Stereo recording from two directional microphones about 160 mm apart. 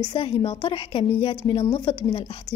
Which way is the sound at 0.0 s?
25° left (ahead or behind).